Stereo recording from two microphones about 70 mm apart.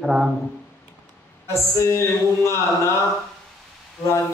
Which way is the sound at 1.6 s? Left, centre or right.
Left.